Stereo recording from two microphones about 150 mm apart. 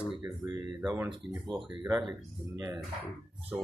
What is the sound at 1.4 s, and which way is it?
Speech, centre (ahead or behind).